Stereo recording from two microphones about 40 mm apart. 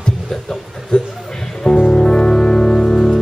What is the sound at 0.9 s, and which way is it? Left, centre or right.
Music, left.